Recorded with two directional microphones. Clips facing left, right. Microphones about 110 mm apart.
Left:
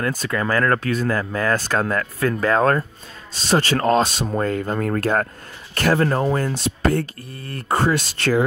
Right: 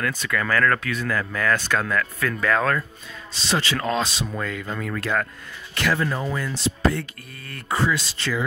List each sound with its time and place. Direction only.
0.1 s speech: 35° left (ahead or behind)
3.3 s speech: 45° left (ahead or behind)
7.4 s speech: 35° left (ahead or behind)
7.7 s speech: 55° left (ahead or behind)